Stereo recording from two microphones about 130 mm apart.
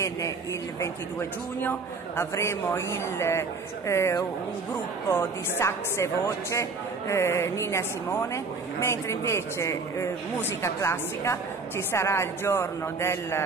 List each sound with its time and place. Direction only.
1.6 s a woman's voice: 15° left (ahead or behind)